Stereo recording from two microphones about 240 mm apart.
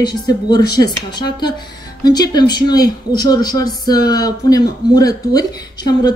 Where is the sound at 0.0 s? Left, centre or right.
Centre.